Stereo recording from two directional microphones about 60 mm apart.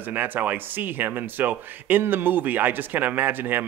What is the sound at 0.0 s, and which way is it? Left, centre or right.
A man's voice, right.